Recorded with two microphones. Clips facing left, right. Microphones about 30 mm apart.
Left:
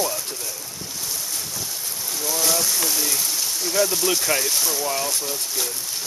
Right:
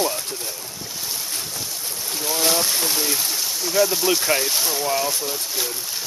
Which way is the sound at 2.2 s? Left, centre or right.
Right.